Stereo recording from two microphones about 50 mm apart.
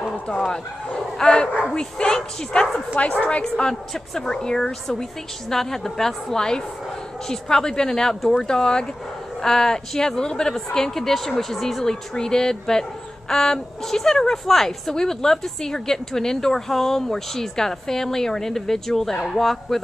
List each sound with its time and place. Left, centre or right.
0.3 s a woman's voice: centre